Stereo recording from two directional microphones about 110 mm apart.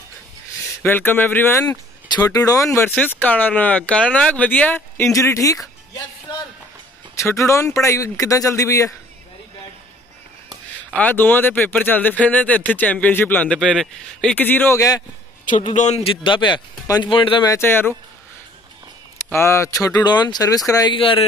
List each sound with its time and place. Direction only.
0.6 s speech: 20° left (ahead or behind)
2.0 s speech: 35° left (ahead or behind)
2.9 s speech: 15° left (ahead or behind)
7.2 s speech: 25° left (ahead or behind)
10.9 s speech: 15° left (ahead or behind)
13.6 s speech: 5° left (ahead or behind)
14.8 s speech: 30° left (ahead or behind)
15.8 s a man's voice: 90° left
16.1 s speech: 45° left (ahead or behind)
17.5 s speech: 20° left (ahead or behind)
19.3 s speech: 25° left (ahead or behind)
20.9 s speech: 55° left (ahead or behind)